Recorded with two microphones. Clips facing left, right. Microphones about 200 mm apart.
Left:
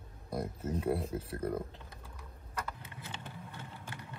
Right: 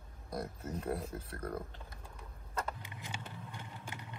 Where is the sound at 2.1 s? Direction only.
30° right (ahead or behind).